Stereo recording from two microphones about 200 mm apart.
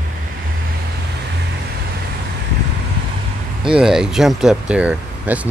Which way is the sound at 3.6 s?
5° right (ahead or behind).